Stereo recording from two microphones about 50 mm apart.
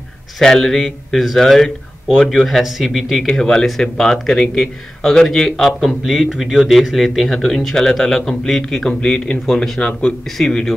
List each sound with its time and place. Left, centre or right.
0.4 s a man's voice: centre
10.2 s a man's voice: centre